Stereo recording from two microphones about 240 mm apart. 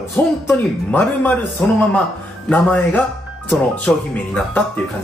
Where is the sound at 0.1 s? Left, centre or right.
Centre.